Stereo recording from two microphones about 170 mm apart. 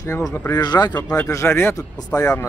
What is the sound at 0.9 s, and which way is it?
Speech, 10° left (ahead or behind).